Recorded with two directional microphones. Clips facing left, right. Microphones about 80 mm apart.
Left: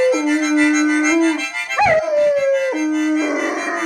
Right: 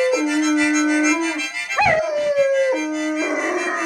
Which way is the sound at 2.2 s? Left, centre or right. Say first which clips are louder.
Left 2 dB; left.